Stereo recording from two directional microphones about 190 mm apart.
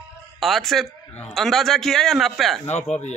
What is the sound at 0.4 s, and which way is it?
A man's voice, centre (ahead or behind).